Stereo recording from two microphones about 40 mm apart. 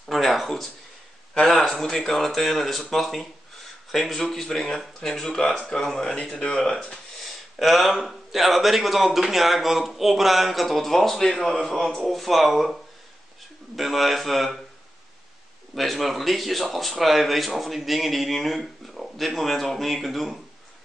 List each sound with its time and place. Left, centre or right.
0.0 s a sound: centre
1.5 s a man's voice: centre
6.0 s speech: centre
7.5 s a man's voice: centre
13.7 s speech: centre
15.7 s speech: centre